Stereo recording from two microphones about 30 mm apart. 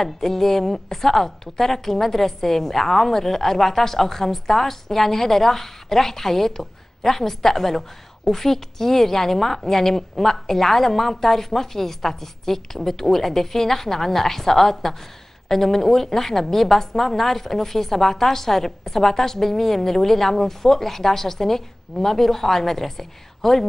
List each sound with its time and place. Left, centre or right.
0.0 s a woman's voice: centre